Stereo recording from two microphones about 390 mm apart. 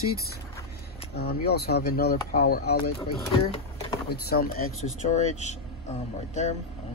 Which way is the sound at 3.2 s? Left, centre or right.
Centre.